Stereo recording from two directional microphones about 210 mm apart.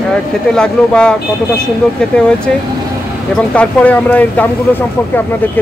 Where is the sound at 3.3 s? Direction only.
5° left (ahead or behind).